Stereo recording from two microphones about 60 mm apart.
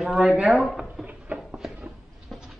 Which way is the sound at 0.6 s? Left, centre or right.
Centre.